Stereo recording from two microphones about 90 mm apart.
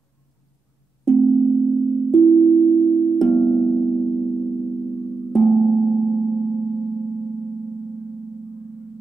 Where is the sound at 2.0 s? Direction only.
5° left (ahead or behind).